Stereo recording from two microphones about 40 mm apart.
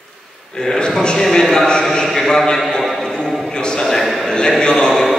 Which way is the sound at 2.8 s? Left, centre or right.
Centre.